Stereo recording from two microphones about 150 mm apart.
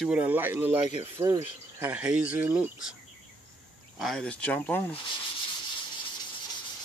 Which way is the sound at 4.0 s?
5° left (ahead or behind).